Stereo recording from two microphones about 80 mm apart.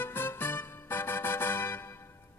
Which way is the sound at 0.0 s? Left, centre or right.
Left.